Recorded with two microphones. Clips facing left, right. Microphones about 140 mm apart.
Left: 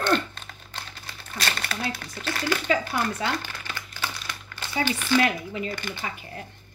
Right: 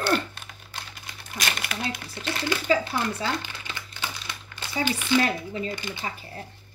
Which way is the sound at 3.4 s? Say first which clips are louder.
Left 1 dB; 20° right (ahead or behind).